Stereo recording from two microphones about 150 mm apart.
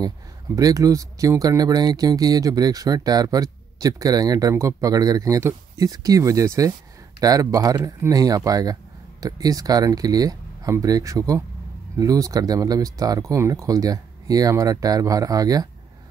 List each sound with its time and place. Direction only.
0.6 s speech: 25° right (ahead or behind)